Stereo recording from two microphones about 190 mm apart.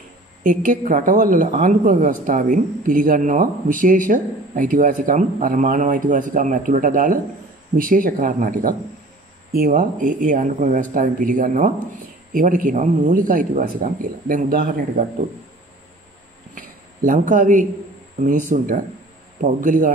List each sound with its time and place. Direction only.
0.4 s speech: 45° right (ahead or behind)
16.5 s a sound: 45° right (ahead or behind)
18.2 s speech: 45° right (ahead or behind)